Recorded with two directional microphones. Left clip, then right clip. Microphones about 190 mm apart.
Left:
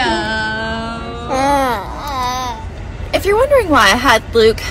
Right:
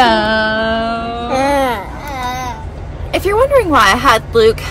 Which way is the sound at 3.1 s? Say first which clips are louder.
Even; 20° right (ahead or behind).